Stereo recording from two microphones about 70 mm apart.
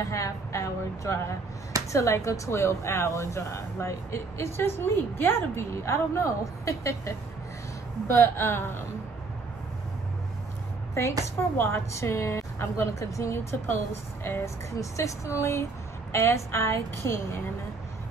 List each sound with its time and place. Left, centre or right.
0.0 s speech: left
8.1 s a woman's voice: left
11.5 s a woman's voice: left